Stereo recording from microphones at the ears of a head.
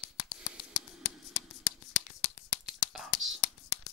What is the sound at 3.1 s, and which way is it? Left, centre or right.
Whispering, left.